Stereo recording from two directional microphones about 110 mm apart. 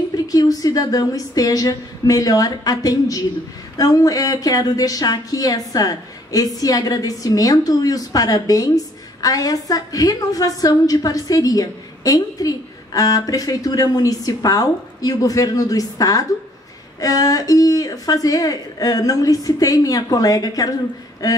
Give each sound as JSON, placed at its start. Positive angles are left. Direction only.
{"t": 0.3, "sound": "speech", "side_deg": 35}